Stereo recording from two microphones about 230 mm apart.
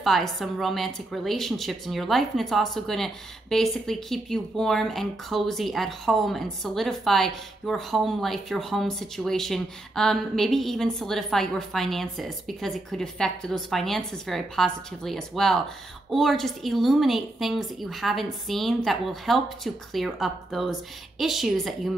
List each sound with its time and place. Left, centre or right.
0.0 s a woman's voice: centre